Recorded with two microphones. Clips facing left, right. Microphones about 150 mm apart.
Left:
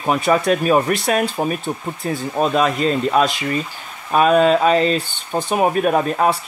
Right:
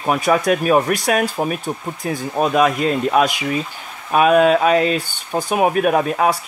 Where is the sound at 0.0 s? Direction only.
Centre (ahead or behind).